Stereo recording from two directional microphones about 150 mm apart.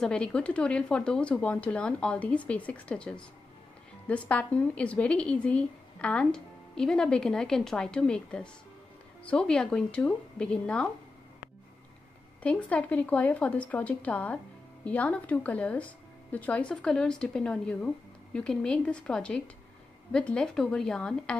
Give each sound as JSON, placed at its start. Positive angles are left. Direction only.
{"t": 0.0, "sound": "a woman's voice", "side_deg": 5}
{"t": 12.4, "sound": "a woman's voice", "side_deg": 10}